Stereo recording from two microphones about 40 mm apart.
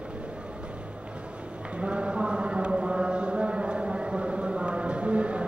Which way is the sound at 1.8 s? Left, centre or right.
Right.